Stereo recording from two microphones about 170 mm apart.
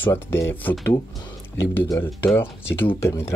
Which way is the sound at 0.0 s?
15° left (ahead or behind).